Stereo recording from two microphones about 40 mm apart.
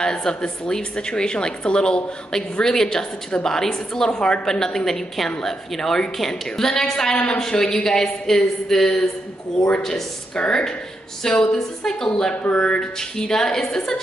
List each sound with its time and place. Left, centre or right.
0.0 s a woman's voice: centre
2.8 s a woman's voice: centre
12.4 s a woman's voice: left